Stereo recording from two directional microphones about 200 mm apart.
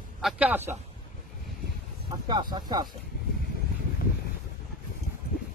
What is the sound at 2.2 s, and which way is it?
Speech, 20° right (ahead or behind).